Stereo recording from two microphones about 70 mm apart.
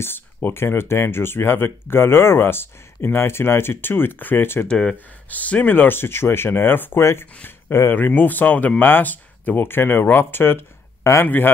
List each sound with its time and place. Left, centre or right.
0.0 s speech: left
4.6 s speech: centre
4.9 s speech: left
7.9 s speech: left